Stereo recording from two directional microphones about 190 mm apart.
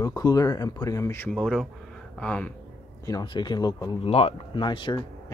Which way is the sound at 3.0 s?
20° left (ahead or behind).